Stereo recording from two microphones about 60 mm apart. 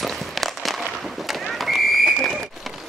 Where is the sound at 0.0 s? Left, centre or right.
Centre.